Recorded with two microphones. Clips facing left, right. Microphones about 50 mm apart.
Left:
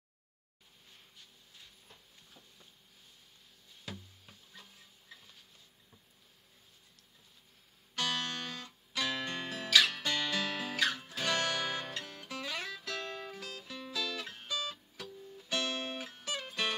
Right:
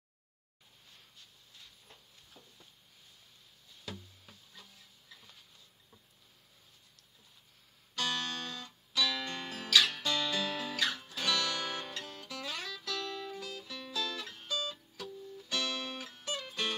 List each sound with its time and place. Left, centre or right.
3.9 s music: centre
7.9 s music: left
9.9 s guitar: left
11.8 s music: left
14.3 s music: left
16.1 s music: left